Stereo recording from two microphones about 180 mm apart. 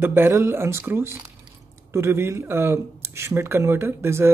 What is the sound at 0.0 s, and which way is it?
Speech, 10° right (ahead or behind).